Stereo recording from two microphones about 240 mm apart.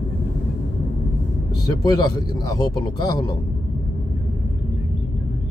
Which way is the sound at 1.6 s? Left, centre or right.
Centre.